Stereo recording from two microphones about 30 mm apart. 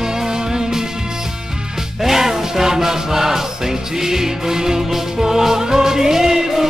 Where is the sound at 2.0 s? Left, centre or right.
Centre.